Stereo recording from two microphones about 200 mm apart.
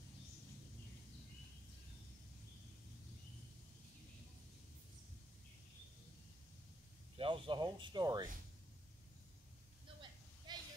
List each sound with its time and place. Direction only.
7.2 s speech: 25° right (ahead or behind)
10.5 s vehicle: 20° right (ahead or behind)